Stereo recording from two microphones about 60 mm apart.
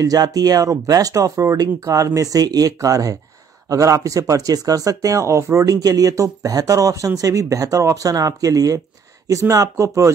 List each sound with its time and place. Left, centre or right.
0.0 s speech: right
2.1 s speech: right
9.3 s speech: right